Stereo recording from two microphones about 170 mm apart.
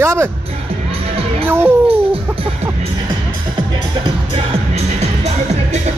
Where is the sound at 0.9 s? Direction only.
35° right (ahead or behind).